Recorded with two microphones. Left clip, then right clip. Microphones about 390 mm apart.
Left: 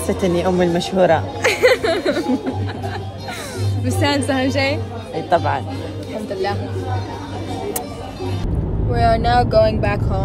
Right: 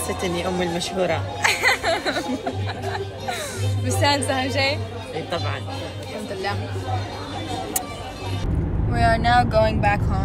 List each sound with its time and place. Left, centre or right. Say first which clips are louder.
0.2 s speech: left 8 dB; left
1.4 s music: left 2 dB; centre
3.8 s a woman's voice: left 2 dB; centre
8.9 s speech: left 2 dB; centre